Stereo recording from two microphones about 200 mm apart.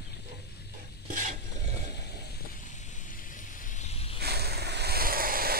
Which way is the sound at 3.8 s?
30° left (ahead or behind).